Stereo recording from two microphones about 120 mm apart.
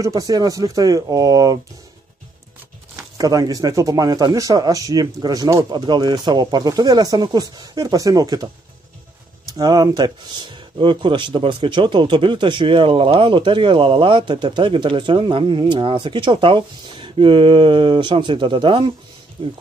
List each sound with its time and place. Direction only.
0.0 s speech: 30° right (ahead or behind)
3.2 s speech: 30° right (ahead or behind)
9.5 s speech: 35° right (ahead or behind)
19.4 s speech: 55° right (ahead or behind)